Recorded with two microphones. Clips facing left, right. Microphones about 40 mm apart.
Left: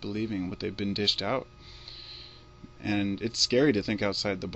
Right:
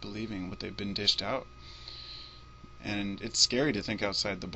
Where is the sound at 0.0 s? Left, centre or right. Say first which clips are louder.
Left 6 dB; centre.